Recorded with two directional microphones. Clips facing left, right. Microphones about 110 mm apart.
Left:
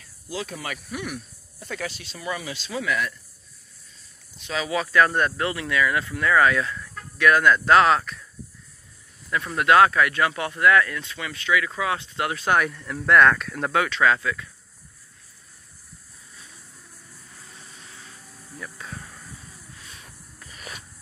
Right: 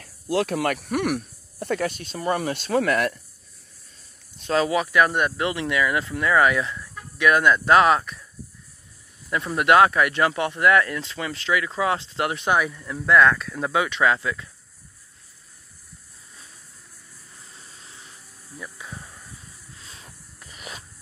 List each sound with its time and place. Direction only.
0.0 s speech: 60° right (ahead or behind)
4.4 s speech: 45° right (ahead or behind)
4.6 s speech: 15° right (ahead or behind)
9.5 s speech: 20° right (ahead or behind)
12.5 s speech: 5° right (ahead or behind); by 14.5 s 25° right (ahead or behind)
17.4 s vehicle: 25° left (ahead or behind)
17.7 s vehicle: 25° right (ahead or behind)
18.6 s a sound: 15° right (ahead or behind)
19.3 s vehicle: 25° left (ahead or behind)
19.8 s a sound: 25° right (ahead or behind)